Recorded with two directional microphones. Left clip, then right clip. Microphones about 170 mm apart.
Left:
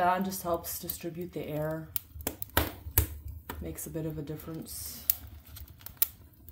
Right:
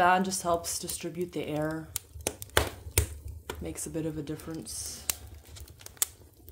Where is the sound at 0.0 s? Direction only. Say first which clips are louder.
Right 4 dB; 55° right (ahead or behind).